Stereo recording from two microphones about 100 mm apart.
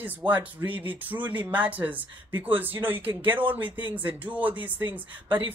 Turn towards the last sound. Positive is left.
turn(degrees=-20)  # may be behind; listen again after turning